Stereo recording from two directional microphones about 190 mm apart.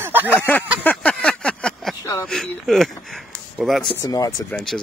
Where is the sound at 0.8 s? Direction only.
5° left (ahead or behind).